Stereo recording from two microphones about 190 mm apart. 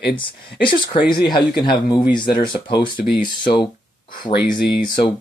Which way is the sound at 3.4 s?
25° left (ahead or behind).